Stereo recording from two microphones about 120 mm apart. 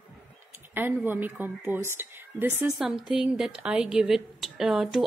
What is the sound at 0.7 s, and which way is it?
A woman's voice, 15° right (ahead or behind).